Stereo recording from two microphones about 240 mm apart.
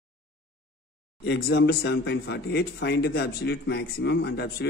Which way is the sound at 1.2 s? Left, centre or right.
Left.